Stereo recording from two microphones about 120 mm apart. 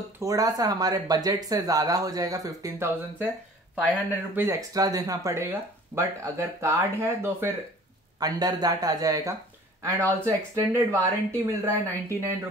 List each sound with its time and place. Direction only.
0.2 s speech: 30° right (ahead or behind)
4.1 s speech: 15° right (ahead or behind)
4.6 s speech: 30° right (ahead or behind)
8.2 s speech: 30° right (ahead or behind)